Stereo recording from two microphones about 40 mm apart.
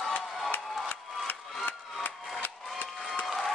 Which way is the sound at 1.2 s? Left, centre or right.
Left.